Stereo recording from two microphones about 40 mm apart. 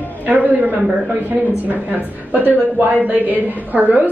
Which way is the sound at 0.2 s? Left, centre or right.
Right.